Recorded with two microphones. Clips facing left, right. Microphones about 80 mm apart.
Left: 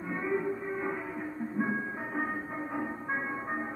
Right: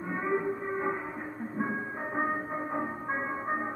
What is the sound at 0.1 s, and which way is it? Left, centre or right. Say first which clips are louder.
Music: right 1 dB; right.